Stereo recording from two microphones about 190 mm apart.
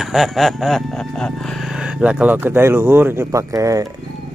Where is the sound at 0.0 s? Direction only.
Centre (ahead or behind); by 3.8 s 15° right (ahead or behind).